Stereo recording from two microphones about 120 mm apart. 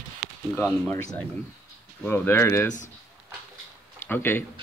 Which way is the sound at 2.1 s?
20° left (ahead or behind).